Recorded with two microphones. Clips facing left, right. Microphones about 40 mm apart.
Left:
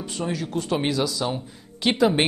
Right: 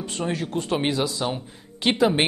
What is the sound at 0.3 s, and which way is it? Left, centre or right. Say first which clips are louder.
Speech: even; right.